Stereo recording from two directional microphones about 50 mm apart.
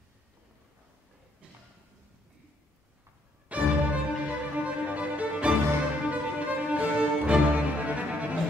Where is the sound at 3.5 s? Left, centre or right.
Right.